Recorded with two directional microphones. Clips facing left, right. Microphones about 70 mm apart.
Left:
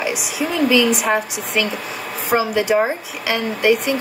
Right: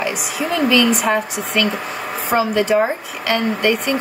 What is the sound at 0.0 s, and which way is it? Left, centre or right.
Speech, centre.